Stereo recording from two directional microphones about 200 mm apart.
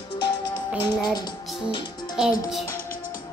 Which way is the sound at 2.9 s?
45° left (ahead or behind).